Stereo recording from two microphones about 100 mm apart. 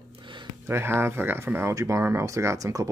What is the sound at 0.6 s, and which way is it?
Speech, 25° right (ahead or behind).